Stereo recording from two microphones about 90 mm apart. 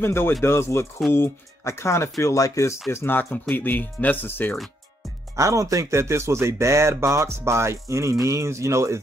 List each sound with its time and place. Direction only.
0.0 s speech: 25° left (ahead or behind)
2.9 s speech: 25° left (ahead or behind)
5.3 s speech: 35° right (ahead or behind)